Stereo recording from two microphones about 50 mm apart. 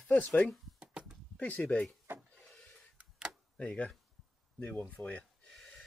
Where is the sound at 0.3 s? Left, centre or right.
Left.